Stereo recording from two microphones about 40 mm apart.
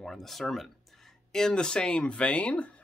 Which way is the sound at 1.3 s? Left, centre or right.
Centre.